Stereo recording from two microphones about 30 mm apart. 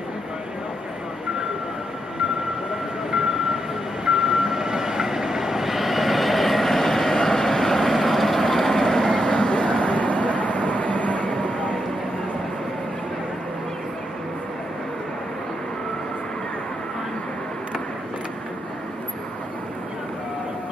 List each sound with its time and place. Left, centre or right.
3.1 s train: centre
9.3 s vehicle: left
9.9 s vehicle: left